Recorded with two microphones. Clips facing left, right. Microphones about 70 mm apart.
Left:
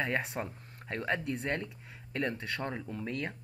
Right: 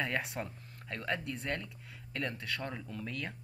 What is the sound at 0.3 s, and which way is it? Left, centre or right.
Speech, centre.